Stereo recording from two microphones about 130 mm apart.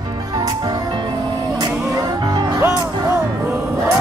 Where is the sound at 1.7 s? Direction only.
10° right (ahead or behind).